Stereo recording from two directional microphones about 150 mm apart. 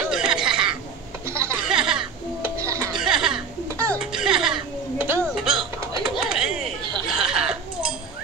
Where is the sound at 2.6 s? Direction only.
20° right (ahead or behind).